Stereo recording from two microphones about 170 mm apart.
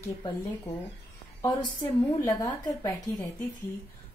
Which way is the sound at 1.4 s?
20° left (ahead or behind).